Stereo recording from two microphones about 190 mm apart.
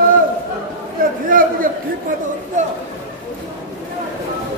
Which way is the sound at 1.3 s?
45° right (ahead or behind).